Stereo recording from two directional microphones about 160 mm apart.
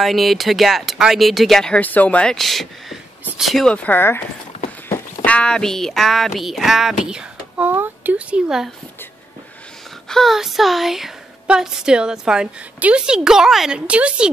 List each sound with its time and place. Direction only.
0.0 s speech: centre (ahead or behind)
5.2 s speech: 5° left (ahead or behind)
10.0 s speech: centre (ahead or behind)